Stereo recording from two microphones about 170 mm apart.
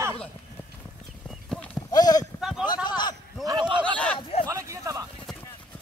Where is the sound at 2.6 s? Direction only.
25° left (ahead or behind).